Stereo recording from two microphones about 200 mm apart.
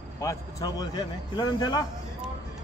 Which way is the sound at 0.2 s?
15° left (ahead or behind).